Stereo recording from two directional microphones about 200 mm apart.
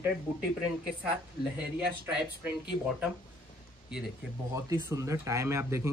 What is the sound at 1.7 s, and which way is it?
Speech, 5° right (ahead or behind).